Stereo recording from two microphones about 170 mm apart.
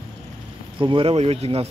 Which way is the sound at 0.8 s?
30° right (ahead or behind).